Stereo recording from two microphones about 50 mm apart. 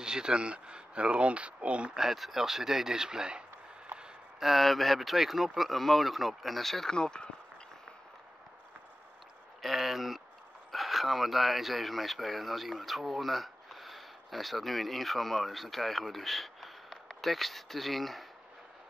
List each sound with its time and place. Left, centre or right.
0.0 s speech: centre
2.0 s speech: centre
4.4 s speech: centre
9.6 s speech: centre